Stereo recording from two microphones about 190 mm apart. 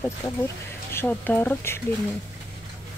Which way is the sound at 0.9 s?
10° left (ahead or behind).